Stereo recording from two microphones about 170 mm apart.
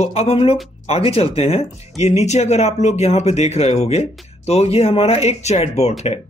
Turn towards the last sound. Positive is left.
turn(degrees=40)  # may be behind; listen again after turning